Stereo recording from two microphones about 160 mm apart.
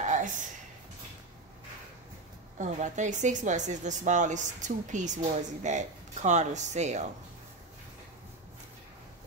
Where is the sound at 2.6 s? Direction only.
50° right (ahead or behind).